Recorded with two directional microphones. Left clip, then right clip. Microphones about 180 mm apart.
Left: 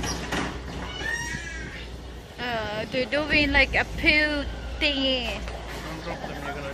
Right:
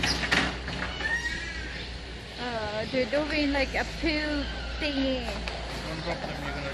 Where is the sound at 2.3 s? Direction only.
Centre (ahead or behind).